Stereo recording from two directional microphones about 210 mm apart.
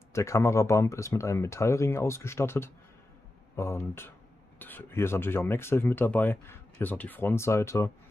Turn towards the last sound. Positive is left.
turn(degrees=15)  # may be behind; listen again after turning